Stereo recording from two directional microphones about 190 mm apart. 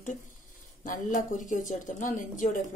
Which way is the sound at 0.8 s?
45° left (ahead or behind).